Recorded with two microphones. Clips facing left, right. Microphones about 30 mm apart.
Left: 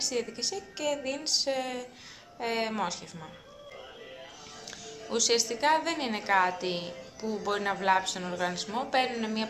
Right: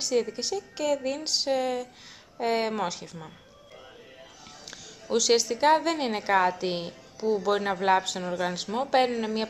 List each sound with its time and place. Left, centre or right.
0.0 s a woman's voice: centre
5.1 s a woman's voice: centre
8.0 s a woman's voice: centre
8.4 s a woman's voice: centre